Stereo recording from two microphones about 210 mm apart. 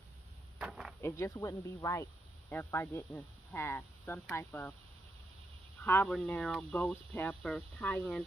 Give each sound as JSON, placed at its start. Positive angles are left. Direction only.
{"t": 0.6, "sound": "speech", "side_deg": -5}
{"t": 1.0, "sound": "speech", "side_deg": 15}
{"t": 5.9, "sound": "speech", "side_deg": 5}